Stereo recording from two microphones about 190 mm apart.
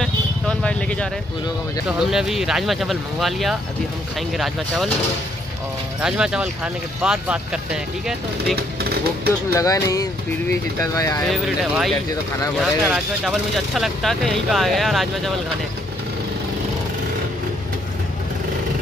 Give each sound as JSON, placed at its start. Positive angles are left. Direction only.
{"t": 0.0, "sound": "vehicle", "side_deg": 5}
{"t": 2.0, "sound": "speech", "side_deg": 0}
{"t": 5.9, "sound": "speech", "side_deg": -5}
{"t": 9.5, "sound": "speech", "side_deg": 15}
{"t": 11.2, "sound": "speech", "side_deg": 0}